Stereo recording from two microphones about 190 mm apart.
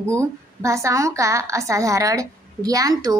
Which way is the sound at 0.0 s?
15° right (ahead or behind).